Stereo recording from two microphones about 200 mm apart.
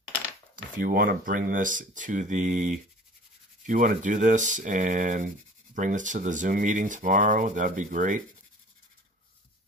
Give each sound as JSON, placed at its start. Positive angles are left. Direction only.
{"t": 0.7, "sound": "speech", "side_deg": -45}